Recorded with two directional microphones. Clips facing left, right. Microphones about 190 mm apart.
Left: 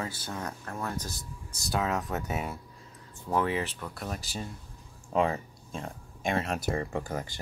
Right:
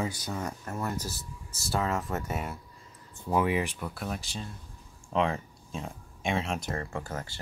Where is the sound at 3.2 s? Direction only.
10° right (ahead or behind); by 6.8 s 5° left (ahead or behind).